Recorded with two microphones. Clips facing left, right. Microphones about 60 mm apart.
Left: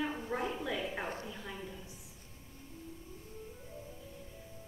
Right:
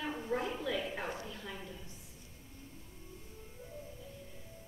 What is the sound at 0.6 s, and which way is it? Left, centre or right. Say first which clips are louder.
A woman's voice: even; centre.